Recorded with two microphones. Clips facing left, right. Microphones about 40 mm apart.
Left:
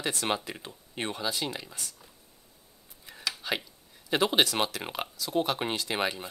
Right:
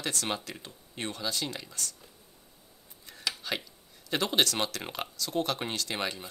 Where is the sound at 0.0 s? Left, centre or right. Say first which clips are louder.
Left 3 dB; centre.